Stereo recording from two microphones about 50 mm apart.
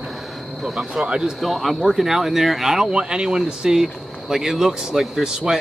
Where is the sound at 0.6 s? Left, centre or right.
Centre.